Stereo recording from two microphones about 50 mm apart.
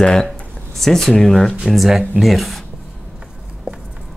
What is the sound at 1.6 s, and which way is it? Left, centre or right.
Speech, centre.